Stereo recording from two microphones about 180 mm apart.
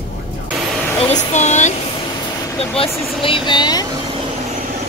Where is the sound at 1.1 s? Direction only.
40° left (ahead or behind).